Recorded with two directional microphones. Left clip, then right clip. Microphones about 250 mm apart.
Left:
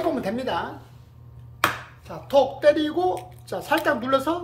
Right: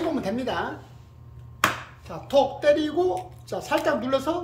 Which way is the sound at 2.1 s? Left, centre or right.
Centre.